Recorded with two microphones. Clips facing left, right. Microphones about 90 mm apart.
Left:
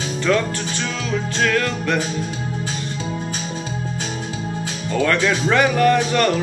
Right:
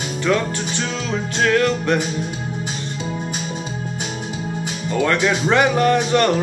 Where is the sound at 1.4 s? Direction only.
25° right (ahead or behind).